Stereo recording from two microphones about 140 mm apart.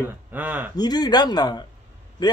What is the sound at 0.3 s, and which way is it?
Speech, 15° right (ahead or behind).